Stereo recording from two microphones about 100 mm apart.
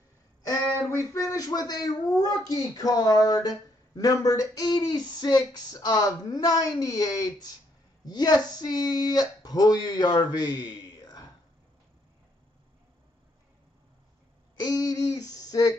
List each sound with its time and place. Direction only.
0.8 s speech: 30° left (ahead or behind)
14.6 s speech: 40° left (ahead or behind)